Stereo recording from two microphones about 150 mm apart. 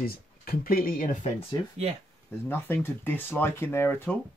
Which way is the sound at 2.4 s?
15° left (ahead or behind).